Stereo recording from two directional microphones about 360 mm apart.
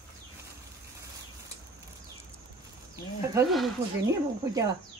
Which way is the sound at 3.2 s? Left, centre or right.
Centre.